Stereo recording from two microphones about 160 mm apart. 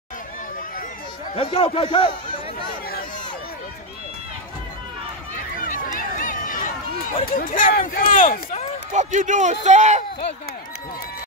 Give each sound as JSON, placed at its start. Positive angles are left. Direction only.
{"t": 1.3, "sound": "speech", "side_deg": 35}
{"t": 5.3, "sound": "run", "side_deg": 55}
{"t": 7.2, "sound": "speech", "side_deg": 60}
{"t": 8.9, "sound": "a man's voice", "side_deg": -50}